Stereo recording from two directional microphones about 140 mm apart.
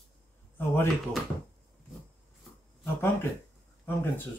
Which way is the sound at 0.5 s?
15° left (ahead or behind).